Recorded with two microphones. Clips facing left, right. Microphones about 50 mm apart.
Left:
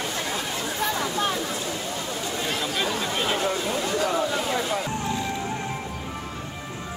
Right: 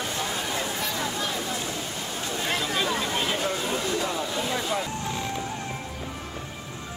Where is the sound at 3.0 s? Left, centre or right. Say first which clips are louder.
Left 1 dB; centre.